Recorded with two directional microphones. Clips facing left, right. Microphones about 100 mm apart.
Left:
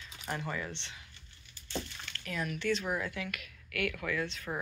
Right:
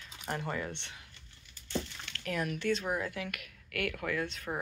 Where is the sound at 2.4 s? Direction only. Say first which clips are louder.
Left 1 dB; 45° right (ahead or behind).